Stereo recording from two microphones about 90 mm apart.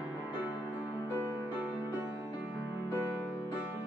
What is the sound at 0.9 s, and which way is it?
Music, 25° left (ahead or behind).